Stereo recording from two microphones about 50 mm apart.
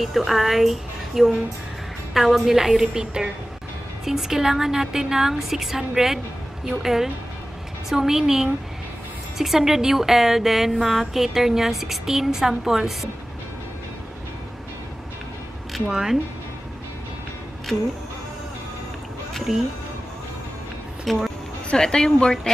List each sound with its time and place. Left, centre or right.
0.3 s a woman's voice: centre
15.9 s a woman's voice: centre
19.5 s a woman's voice: centre
21.0 s speech: centre
21.6 s a woman's voice: centre